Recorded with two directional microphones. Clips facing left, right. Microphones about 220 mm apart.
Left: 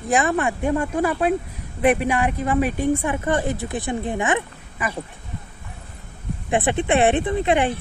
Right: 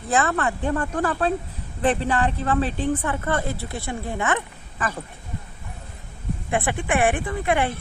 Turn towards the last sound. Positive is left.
turn(degrees=20)  # may be behind; listen again after turning